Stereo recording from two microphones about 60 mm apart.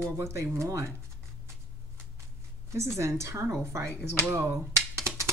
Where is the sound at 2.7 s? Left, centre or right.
Right.